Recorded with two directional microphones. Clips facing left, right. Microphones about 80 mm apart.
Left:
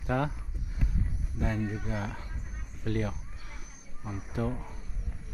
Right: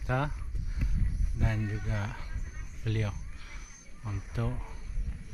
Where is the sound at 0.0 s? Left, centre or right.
Left.